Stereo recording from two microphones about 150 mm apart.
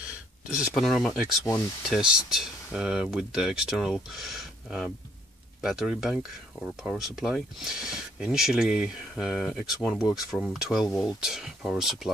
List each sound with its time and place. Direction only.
0.7 s speech: centre (ahead or behind)